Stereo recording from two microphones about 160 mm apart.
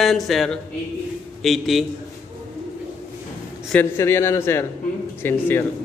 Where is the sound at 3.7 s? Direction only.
15° left (ahead or behind).